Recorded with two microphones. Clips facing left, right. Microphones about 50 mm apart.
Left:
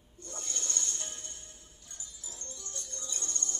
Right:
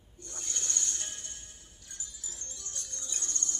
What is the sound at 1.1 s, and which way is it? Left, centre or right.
Music, left.